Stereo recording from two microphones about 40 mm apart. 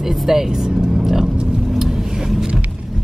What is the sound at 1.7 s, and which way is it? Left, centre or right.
Vehicle, centre.